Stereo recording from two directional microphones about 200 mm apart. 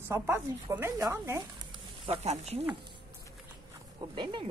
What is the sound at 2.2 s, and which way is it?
Speech, 30° right (ahead or behind).